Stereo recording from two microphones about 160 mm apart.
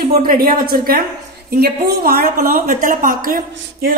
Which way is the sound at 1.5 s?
75° right (ahead or behind).